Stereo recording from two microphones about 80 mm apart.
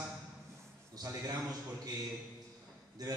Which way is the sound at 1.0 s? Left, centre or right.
Right.